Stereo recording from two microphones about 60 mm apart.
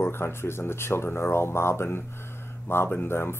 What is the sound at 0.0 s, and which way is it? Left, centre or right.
Speech, left.